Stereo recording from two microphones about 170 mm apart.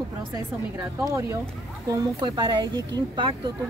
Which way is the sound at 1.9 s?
25° right (ahead or behind).